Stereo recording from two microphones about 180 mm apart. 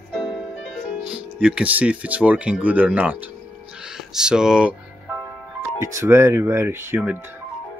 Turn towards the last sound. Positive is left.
turn(degrees=-10)  # may be behind; listen again after turning